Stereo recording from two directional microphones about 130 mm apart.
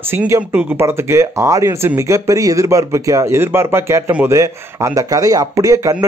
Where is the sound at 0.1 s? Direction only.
15° right (ahead or behind).